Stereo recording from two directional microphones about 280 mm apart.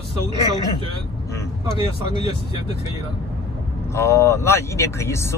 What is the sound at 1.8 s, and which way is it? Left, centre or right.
Speech, centre.